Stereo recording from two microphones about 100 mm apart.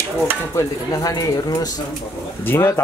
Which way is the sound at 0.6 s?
40° left (ahead or behind).